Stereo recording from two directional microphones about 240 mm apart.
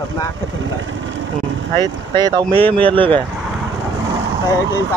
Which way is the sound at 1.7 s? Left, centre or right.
Centre.